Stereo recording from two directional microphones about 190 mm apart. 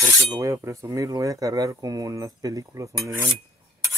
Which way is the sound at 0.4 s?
15° right (ahead or behind).